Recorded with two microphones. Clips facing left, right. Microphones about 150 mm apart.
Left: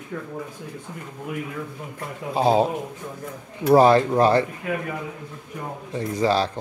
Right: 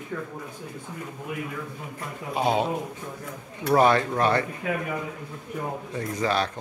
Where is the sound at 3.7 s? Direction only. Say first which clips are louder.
Left 5 dB; 30° left (ahead or behind).